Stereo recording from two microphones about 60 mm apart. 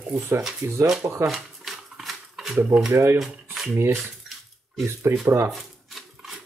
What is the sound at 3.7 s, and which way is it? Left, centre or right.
Speech, right.